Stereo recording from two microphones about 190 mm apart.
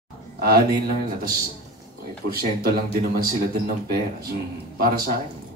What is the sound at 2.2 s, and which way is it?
Speech, 50° right (ahead or behind).